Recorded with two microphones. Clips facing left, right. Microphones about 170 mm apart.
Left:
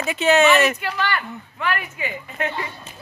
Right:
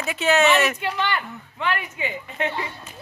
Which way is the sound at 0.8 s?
20° right (ahead or behind).